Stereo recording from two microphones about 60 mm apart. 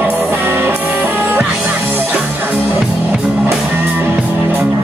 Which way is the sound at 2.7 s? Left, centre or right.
Centre.